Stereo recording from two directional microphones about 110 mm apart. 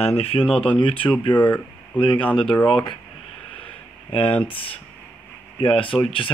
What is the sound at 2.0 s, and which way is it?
Speech, 50° left (ahead or behind).